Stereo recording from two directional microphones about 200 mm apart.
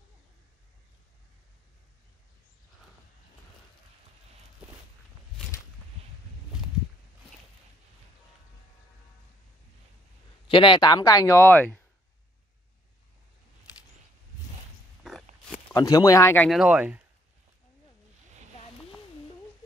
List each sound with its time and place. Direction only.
10.5 s speech: 25° left (ahead or behind); by 11.8 s 10° left (ahead or behind)
15.0 s biting: centre (ahead or behind)
15.7 s speech: 15° left (ahead or behind)
16.4 s speech: centre (ahead or behind)